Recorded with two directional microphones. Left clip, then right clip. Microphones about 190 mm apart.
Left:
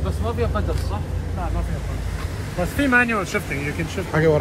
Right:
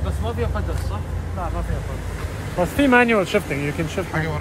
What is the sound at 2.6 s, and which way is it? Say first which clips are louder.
Speech: right 2 dB; 50° right (ahead or behind).